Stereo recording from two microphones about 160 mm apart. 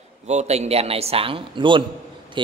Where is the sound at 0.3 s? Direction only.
45° right (ahead or behind).